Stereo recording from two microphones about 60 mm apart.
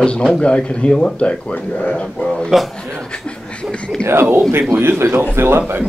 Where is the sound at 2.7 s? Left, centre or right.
Centre.